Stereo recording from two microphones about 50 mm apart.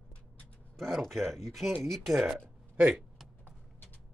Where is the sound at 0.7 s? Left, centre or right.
Centre.